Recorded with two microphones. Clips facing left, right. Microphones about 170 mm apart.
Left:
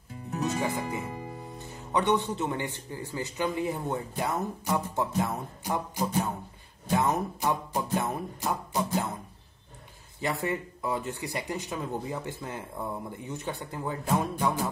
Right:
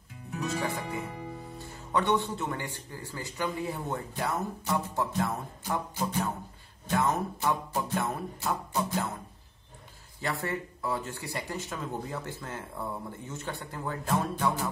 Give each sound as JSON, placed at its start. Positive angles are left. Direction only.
{"t": 0.4, "sound": "music", "side_deg": 20}
{"t": 1.6, "sound": "speech", "side_deg": 20}
{"t": 10.2, "sound": "speech", "side_deg": 20}